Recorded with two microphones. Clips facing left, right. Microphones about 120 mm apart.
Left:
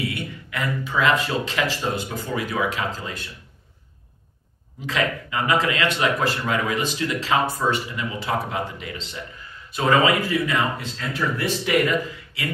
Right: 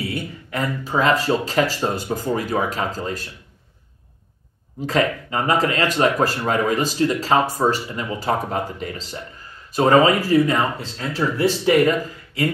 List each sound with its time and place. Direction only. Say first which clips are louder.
0.1 s speech: right 4 dB; 40° right (ahead or behind)
4.8 s speech: right 4 dB; 40° right (ahead or behind)